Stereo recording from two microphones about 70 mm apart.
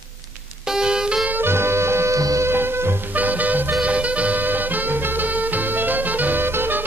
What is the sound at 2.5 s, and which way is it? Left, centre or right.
Music, right.